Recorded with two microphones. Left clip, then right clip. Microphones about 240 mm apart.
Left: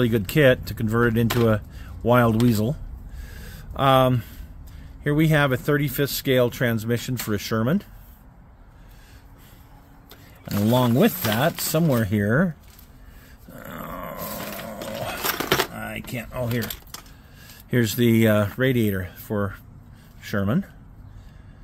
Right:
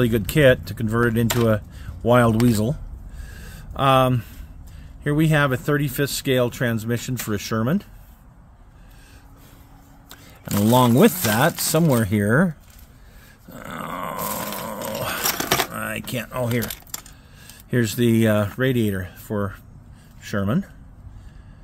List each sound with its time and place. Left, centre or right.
0.0 s speech: centre
1.4 s a sound: centre
5.0 s speech: centre
10.0 s speech: centre
13.5 s growling: centre
15.8 s a sound: right
16.4 s speech: centre
17.4 s speech: centre